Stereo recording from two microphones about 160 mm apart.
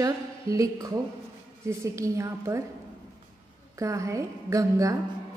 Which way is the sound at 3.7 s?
20° right (ahead or behind).